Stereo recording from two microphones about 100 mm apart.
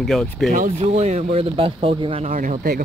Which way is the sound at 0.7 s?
90° right.